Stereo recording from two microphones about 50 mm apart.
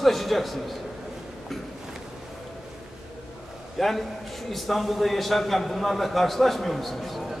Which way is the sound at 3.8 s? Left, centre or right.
Centre.